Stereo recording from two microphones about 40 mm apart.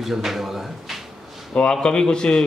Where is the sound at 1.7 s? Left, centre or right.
Centre.